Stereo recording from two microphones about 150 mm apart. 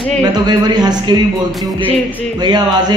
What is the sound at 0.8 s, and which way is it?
Speech, 30° right (ahead or behind).